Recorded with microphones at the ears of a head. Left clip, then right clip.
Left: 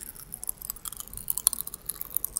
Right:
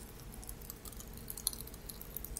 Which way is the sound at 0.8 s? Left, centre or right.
Left.